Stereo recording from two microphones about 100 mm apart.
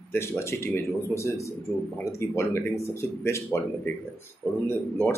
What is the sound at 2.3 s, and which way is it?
Speech, 25° left (ahead or behind).